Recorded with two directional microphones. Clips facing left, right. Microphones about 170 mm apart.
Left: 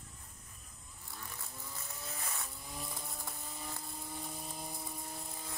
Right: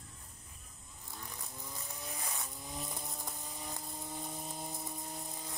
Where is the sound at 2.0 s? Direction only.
15° right (ahead or behind).